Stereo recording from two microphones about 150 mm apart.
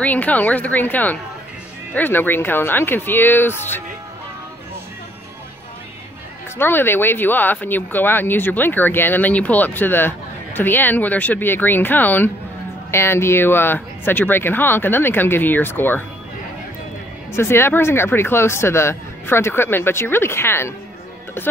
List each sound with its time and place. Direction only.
0.0 s speech: 10° left (ahead or behind)
6.6 s speech: 15° left (ahead or behind)
17.3 s speech: 15° left (ahead or behind)